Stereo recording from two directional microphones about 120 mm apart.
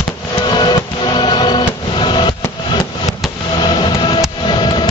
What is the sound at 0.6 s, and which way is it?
Printer, 35° left (ahead or behind).